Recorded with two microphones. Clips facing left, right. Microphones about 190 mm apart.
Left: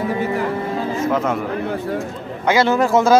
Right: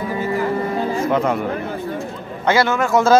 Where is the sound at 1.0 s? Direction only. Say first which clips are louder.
Even; centre (ahead or behind).